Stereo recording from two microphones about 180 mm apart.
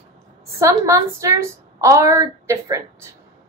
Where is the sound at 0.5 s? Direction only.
15° right (ahead or behind).